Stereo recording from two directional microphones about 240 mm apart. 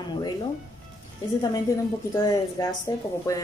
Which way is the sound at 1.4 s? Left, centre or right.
Centre.